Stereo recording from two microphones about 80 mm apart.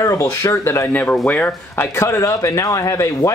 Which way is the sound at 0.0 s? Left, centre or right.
Left.